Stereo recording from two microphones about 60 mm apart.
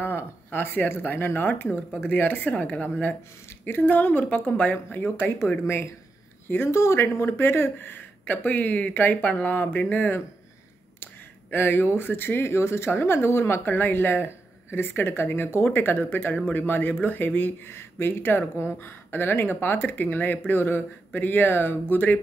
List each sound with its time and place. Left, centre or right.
0.0 s speech: left
3.6 s speech: left
5.6 s speech: left
7.2 s speech: left
11.5 s speech: left